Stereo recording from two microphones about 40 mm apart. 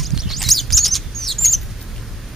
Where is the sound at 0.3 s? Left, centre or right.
Centre.